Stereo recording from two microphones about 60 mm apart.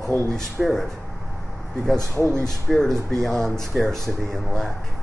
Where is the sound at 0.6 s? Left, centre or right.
Centre.